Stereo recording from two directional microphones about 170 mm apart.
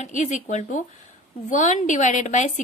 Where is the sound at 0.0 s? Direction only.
45° left (ahead or behind).